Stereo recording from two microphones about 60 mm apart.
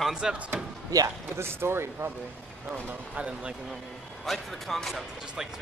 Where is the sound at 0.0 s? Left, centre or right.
Centre.